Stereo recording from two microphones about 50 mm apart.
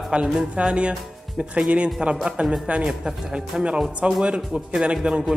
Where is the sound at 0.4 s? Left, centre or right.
Right.